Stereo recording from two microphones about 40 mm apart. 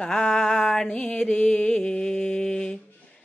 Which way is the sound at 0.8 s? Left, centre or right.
Left.